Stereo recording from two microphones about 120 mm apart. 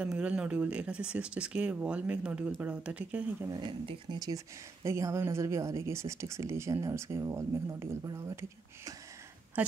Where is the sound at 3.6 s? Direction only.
45° right (ahead or behind).